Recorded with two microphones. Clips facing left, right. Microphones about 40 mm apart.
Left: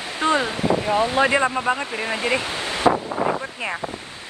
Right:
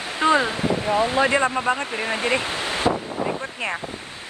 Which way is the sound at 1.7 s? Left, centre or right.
Right.